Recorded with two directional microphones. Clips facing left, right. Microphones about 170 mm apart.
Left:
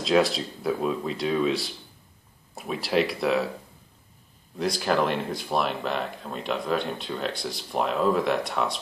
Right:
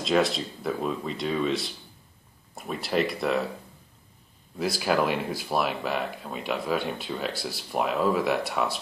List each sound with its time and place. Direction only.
0.0 s speech: centre (ahead or behind)
4.6 s speech: 5° right (ahead or behind)